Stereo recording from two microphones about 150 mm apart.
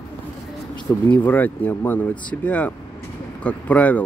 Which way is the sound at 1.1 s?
10° left (ahead or behind).